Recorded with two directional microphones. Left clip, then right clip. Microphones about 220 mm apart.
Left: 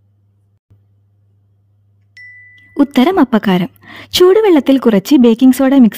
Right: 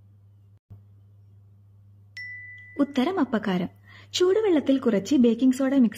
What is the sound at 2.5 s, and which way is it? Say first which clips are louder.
A woman's voice: left 13 dB; 45° left (ahead or behind).